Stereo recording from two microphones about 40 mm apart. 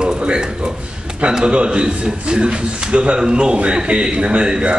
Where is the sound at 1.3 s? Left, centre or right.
Right.